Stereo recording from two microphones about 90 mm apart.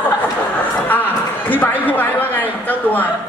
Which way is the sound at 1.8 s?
20° left (ahead or behind).